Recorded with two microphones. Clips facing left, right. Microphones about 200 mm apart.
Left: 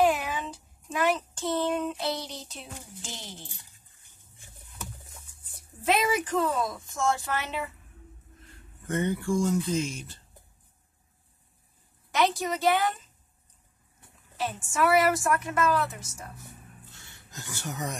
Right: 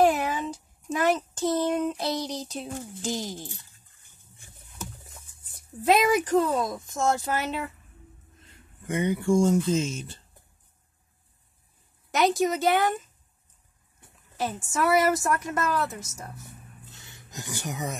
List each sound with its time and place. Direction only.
0.0 s child singing: 40° right (ahead or behind)
5.9 s a woman's voice: 40° right (ahead or behind)
8.8 s speech: 15° right (ahead or behind)
12.1 s a woman's voice: 45° right (ahead or behind)
14.3 s a woman's voice: 45° right (ahead or behind)
16.9 s a sound: 15° right (ahead or behind)